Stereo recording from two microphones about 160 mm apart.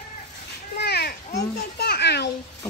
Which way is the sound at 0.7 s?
90° left.